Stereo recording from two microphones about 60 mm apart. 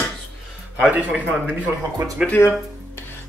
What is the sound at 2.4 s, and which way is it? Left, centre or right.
Speech, left.